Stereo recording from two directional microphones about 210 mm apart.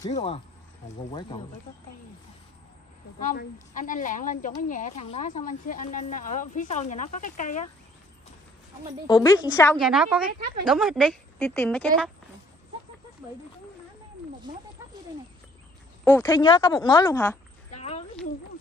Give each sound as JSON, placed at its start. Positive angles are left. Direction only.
{"t": 0.1, "sound": "speech", "side_deg": 30}
{"t": 3.2, "sound": "speech", "side_deg": 35}
{"t": 9.0, "sound": "speech", "side_deg": 20}
{"t": 9.8, "sound": "a woman's voice", "side_deg": 0}
{"t": 14.8, "sound": "a sound", "side_deg": -10}
{"t": 16.0, "sound": "speech", "side_deg": 10}
{"t": 17.6, "sound": "a sound", "side_deg": 30}